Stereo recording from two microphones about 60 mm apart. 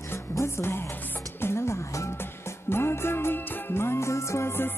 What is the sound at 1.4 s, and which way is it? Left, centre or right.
Music, left.